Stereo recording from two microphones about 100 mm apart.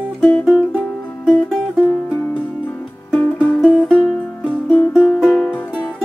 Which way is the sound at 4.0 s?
10° left (ahead or behind).